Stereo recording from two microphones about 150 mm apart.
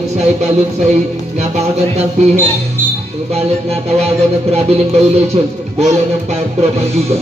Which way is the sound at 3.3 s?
45° right (ahead or behind).